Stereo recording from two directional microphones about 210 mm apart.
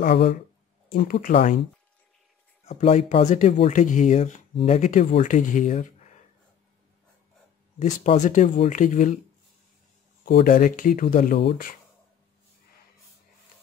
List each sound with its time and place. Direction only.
0.0 s speech: 50° left (ahead or behind); by 1.6 s 35° left (ahead or behind)
2.6 s speech: 30° left (ahead or behind)
7.8 s speech: 35° left (ahead or behind)
10.2 s speech: 45° left (ahead or behind)